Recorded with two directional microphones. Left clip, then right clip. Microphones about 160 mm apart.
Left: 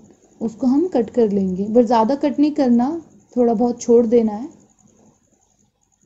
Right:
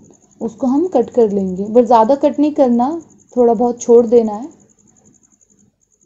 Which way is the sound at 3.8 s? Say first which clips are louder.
Right 5 dB; 15° right (ahead or behind).